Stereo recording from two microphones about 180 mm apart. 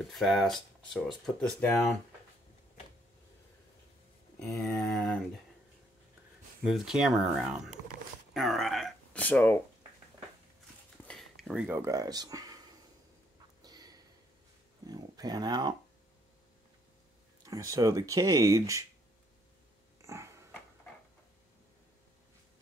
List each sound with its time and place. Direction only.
0.1 s speech: centre (ahead or behind)
4.4 s a sound: 5° left (ahead or behind)
6.6 s speech: centre (ahead or behind)
11.1 s a sound: centre (ahead or behind); by 13.9 s 20° right (ahead or behind)
14.9 s speech: 20° right (ahead or behind)
17.5 s speech: 20° right (ahead or behind)
20.1 s dog: 15° right (ahead or behind)